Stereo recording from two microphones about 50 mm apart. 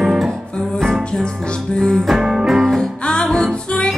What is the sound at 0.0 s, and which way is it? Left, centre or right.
Music, centre.